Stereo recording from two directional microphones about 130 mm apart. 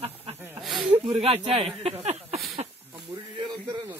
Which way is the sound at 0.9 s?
50° right (ahead or behind).